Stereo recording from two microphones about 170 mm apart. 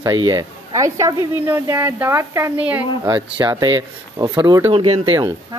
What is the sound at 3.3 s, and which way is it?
Speech, 25° right (ahead or behind).